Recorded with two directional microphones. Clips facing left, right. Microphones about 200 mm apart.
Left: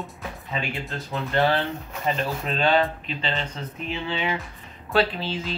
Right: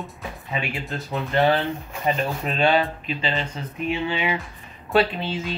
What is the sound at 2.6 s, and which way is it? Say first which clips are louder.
Speech: right 1 dB; 10° right (ahead or behind).